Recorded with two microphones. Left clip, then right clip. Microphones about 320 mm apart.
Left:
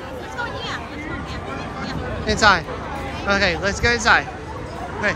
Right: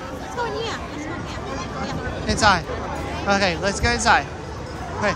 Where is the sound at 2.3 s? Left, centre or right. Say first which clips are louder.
Left 2 dB; centre.